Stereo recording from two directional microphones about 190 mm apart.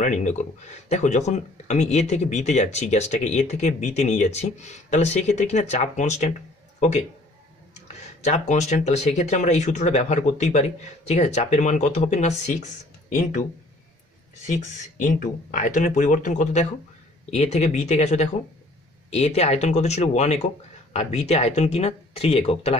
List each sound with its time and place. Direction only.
0.0 s a man's voice: 40° left (ahead or behind)
8.2 s speech: 35° left (ahead or behind)